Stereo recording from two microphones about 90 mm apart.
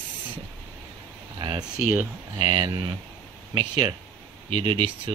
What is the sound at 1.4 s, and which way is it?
Speech, 55° right (ahead or behind).